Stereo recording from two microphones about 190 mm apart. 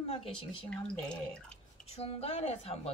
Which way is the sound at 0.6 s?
5° left (ahead or behind).